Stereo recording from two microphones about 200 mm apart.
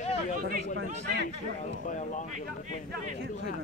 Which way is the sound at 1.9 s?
40° left (ahead or behind).